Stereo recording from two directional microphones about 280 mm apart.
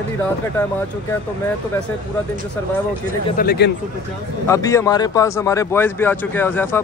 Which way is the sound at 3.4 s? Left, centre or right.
Left.